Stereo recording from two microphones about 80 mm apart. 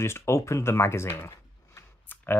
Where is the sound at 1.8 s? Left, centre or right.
Left.